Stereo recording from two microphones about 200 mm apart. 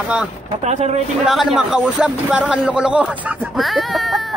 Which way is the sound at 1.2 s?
Centre (ahead or behind).